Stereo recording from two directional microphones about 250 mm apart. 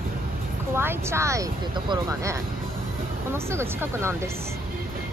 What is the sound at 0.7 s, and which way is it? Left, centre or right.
Speech, centre.